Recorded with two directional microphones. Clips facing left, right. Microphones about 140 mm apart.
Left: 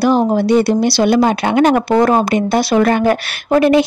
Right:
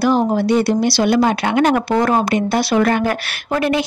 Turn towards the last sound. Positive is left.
turn(degrees=25)  # may be behind; listen again after turning